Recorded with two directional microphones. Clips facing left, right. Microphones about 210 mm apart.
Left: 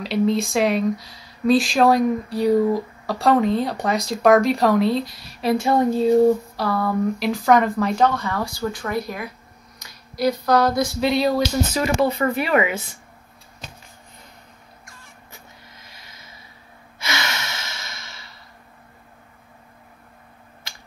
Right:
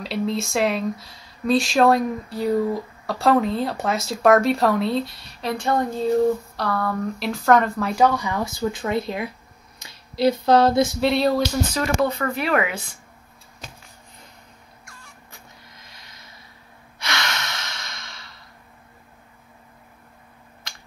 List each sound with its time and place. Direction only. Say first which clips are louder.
0.0 s speech: left 5 dB; centre (ahead or behind); by 10.9 s 25° right (ahead or behind)
11.0 s speech: even; centre (ahead or behind)
15.9 s a sound: left 1 dB; 5° left (ahead or behind)
17.0 s sigh: left 1 dB; 5° left (ahead or behind)